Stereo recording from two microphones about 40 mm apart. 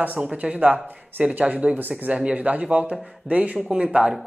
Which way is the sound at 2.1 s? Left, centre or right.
Right.